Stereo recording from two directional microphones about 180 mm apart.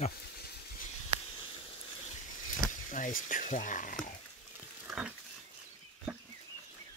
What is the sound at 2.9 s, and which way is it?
Speech, 45° left (ahead or behind).